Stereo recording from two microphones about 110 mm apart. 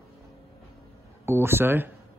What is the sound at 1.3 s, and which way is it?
Speech, 20° right (ahead or behind).